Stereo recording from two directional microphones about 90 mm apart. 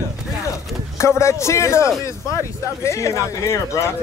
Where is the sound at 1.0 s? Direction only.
30° left (ahead or behind).